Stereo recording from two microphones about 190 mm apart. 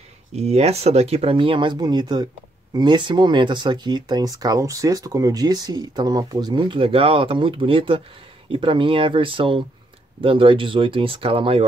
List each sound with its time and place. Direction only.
0.3 s speech: 35° right (ahead or behind)